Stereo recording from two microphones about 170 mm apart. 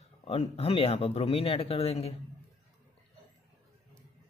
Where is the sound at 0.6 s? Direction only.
35° left (ahead or behind).